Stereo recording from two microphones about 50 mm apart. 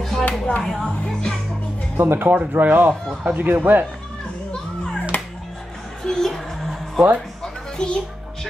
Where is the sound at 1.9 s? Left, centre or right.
Right.